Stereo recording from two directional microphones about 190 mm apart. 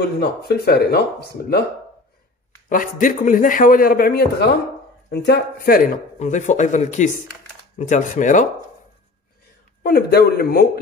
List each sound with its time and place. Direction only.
0.2 s speech: 60° left (ahead or behind)
2.7 s speech: 45° left (ahead or behind)
9.8 s speech: 55° left (ahead or behind)